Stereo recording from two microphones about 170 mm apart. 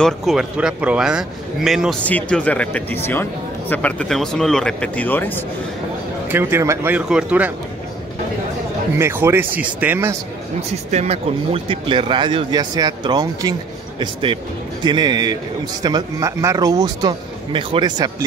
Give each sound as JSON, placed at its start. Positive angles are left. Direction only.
{"t": 0.0, "sound": "a man's voice", "side_deg": 0}
{"t": 6.2, "sound": "speech", "side_deg": -15}
{"t": 8.9, "sound": "speech", "side_deg": -15}
{"t": 10.9, "sound": "speech", "side_deg": -40}